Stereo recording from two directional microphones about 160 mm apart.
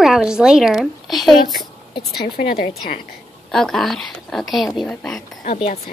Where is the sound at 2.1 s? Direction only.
75° left (ahead or behind).